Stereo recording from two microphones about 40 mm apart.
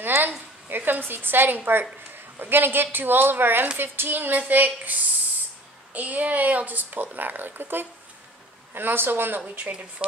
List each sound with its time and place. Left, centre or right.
0.0 s a woman's voice: right
5.9 s a woman's voice: right
9.6 s speech: right